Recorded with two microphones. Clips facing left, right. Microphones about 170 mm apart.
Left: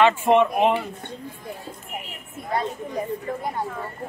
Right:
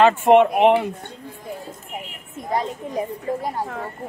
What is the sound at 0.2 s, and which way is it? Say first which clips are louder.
Speech: right 4 dB; 65° right (ahead or behind).